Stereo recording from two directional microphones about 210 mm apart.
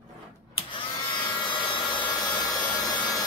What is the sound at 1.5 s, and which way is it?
Wood, 25° left (ahead or behind).